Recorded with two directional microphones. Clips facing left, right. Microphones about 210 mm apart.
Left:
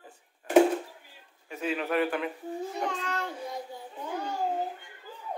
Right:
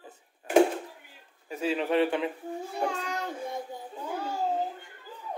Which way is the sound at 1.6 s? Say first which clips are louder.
Right 3 dB; 30° right (ahead or behind).